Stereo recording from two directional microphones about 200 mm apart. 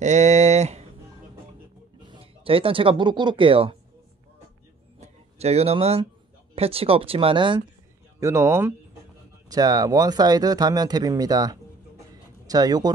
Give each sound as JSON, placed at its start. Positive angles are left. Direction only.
{"t": 0.0, "sound": "a sound", "side_deg": -35}
{"t": 2.0, "sound": "speech", "side_deg": -25}
{"t": 5.0, "sound": "speech", "side_deg": -30}